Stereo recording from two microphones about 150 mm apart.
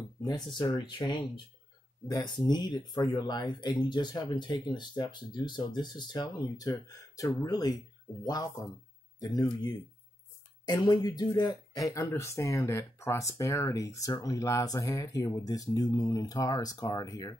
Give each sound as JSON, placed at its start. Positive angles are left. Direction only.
{"t": 0.2, "sound": "speech", "side_deg": 30}